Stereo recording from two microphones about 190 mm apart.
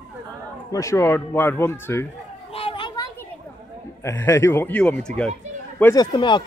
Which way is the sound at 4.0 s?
15° left (ahead or behind).